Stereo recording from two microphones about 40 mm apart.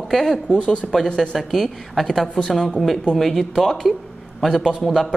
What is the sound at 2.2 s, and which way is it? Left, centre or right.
A man's voice, centre.